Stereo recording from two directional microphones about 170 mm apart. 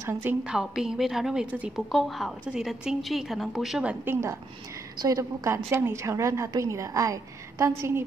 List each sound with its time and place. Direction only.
0.0 s a woman's voice: 10° right (ahead or behind)